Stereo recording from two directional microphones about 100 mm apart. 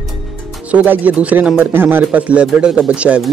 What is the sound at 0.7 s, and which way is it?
Speech, 15° right (ahead or behind).